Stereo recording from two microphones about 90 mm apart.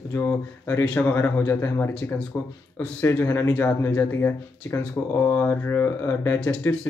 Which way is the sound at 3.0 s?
20° left (ahead or behind).